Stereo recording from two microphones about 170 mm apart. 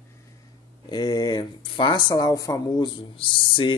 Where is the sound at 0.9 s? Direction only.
25° left (ahead or behind).